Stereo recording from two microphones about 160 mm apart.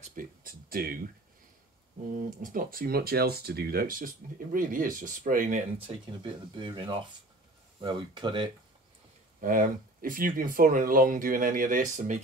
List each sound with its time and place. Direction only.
0.0 s speech: 55° right (ahead or behind)
2.4 s speech: 65° right (ahead or behind)
5.9 s speech: 30° right (ahead or behind)
9.4 s speech: 60° right (ahead or behind)